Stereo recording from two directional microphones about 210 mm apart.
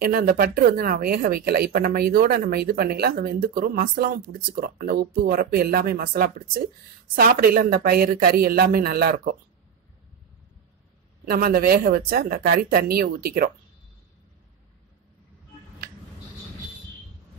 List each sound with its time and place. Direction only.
0.0 s speech: 45° right (ahead or behind)
11.2 s speech: 45° right (ahead or behind)